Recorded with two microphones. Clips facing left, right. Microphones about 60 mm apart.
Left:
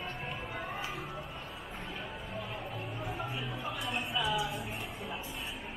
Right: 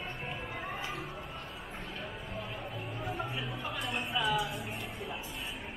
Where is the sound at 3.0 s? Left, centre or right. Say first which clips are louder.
Right 2 dB; centre.